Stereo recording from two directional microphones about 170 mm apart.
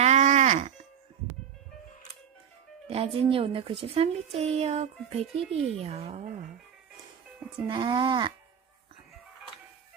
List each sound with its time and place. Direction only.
0.0 s music: 45° right (ahead or behind)
2.9 s a woman's voice: 35° right (ahead or behind)
7.6 s speech: 25° right (ahead or behind)